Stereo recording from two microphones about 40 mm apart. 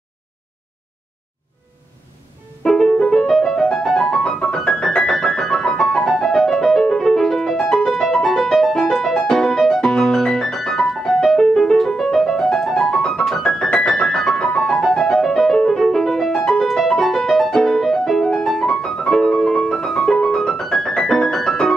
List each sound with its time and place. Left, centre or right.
2.6 s music: centre
13.8 s keyboard: centre
14.6 s music: centre